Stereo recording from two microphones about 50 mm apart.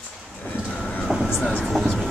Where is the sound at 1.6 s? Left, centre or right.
Centre.